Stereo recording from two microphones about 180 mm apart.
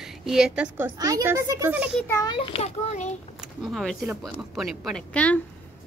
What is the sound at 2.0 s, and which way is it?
Speech, 10° left (ahead or behind).